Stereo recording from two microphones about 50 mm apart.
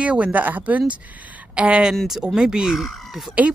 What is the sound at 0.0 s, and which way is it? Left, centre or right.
Speech, right.